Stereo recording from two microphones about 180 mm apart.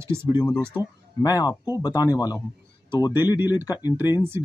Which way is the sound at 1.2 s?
20° left (ahead or behind).